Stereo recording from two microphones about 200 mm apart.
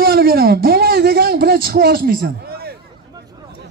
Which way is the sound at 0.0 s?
50° right (ahead or behind).